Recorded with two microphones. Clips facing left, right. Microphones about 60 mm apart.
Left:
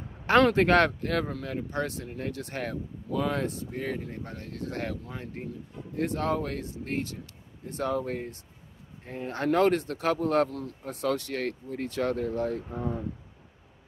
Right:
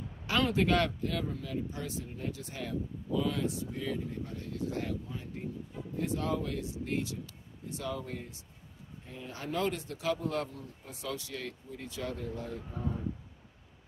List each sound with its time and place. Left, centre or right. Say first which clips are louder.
0.3 s speech: left 8 dB; left